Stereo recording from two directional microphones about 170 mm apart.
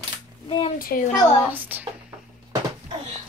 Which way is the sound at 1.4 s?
10° right (ahead or behind).